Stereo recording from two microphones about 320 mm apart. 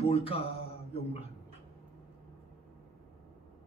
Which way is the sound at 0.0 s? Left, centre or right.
Centre.